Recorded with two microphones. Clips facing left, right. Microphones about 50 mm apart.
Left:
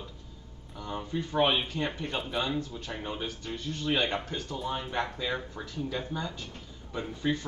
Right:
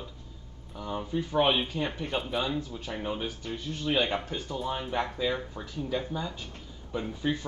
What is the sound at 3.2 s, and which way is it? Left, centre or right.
Speech, centre.